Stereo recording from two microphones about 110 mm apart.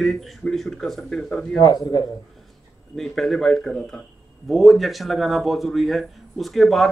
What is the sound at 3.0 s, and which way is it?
A man's voice, centre (ahead or behind).